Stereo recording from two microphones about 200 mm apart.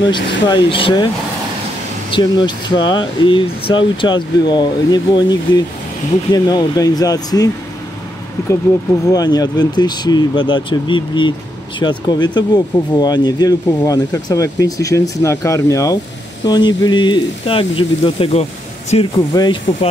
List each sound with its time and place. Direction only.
0.0 s speech: 25° left (ahead or behind)
2.0 s speech: 25° left (ahead or behind)